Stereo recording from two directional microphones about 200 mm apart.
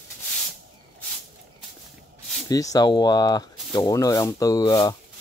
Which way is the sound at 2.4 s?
15° left (ahead or behind).